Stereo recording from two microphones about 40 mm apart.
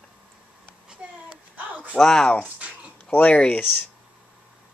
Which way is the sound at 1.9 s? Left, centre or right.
Centre.